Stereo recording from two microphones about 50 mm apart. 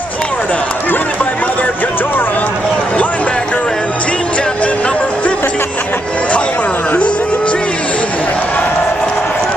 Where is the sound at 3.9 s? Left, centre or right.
Left.